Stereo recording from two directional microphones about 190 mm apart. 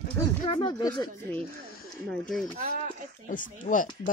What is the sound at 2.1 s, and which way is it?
Speech, centre (ahead or behind).